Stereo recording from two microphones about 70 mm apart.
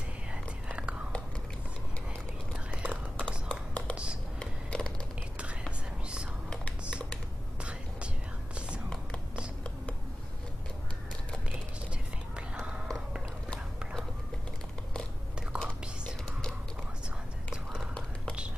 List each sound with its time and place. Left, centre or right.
0.3 s whispering: centre
2.5 s whispering: centre
3.4 s music: left
3.9 s a sound: centre
4.4 s a sound: centre
6.8 s computer keyboard: centre
8.5 s whispering: centre
15.5 s whispering: centre